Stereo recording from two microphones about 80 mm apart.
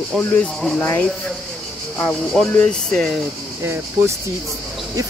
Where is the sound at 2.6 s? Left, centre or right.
Centre.